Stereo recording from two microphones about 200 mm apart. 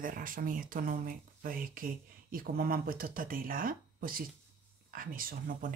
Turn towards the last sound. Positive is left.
turn(degrees=-45)  # may be behind; listen again after turning